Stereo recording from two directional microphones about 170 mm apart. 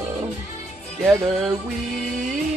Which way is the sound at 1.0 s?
15° right (ahead or behind).